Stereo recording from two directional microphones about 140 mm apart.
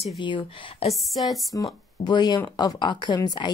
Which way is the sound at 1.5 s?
30° left (ahead or behind).